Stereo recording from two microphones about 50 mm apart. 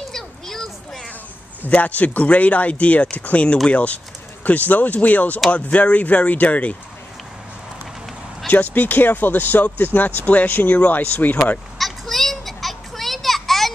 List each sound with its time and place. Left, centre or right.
0.1 s a sound: centre
1.6 s speech: left
8.5 s speech: left
11.8 s children playing: centre